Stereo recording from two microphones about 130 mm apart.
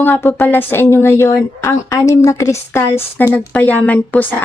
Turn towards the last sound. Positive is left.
turn(degrees=10)  # may be behind; listen again after turning